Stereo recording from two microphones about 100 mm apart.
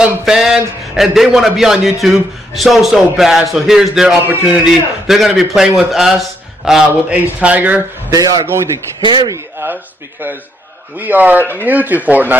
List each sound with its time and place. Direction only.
0.0 s a man's voice: 5° right (ahead or behind)
7.3 s speech: 15° right (ahead or behind)
8.1 s a man's voice: 35° right (ahead or behind)
9.0 s speech: 50° right (ahead or behind)
9.3 s speech: 25° right (ahead or behind)
11.0 s speech: 20° right (ahead or behind)